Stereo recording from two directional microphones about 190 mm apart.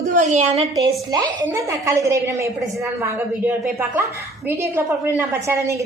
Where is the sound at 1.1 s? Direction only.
20° right (ahead or behind).